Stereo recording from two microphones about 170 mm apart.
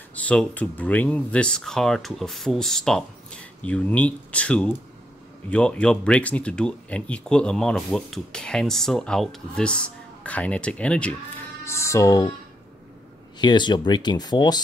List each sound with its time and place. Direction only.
0.1 s speech: 10° left (ahead or behind)
13.4 s speech: 25° left (ahead or behind)